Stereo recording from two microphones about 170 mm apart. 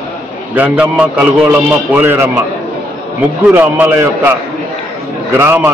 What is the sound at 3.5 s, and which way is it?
Speech, 10° right (ahead or behind).